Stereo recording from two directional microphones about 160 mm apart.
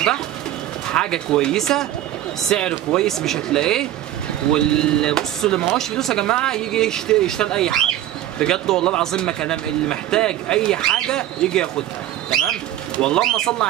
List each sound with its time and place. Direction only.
0.8 s speech: 5° left (ahead or behind)